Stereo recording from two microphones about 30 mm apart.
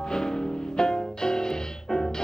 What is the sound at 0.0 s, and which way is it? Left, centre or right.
Music, left.